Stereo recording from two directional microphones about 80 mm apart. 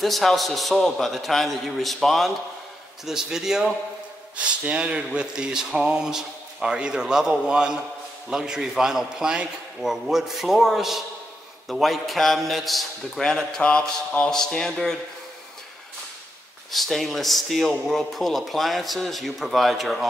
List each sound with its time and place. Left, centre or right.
0.0 s a man's voice: centre
16.7 s a man's voice: centre